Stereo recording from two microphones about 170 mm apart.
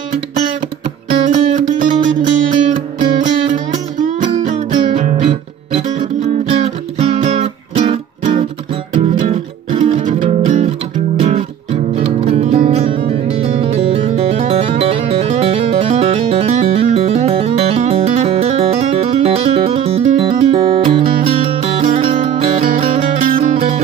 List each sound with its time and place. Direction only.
1.3 s music: 50° right (ahead or behind)